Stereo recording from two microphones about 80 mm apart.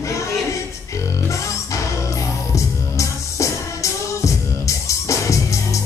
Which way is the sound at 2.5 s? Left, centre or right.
Left.